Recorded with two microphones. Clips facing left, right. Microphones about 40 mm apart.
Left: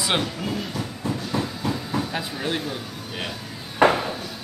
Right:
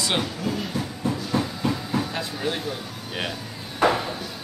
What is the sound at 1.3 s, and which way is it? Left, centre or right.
Train, centre.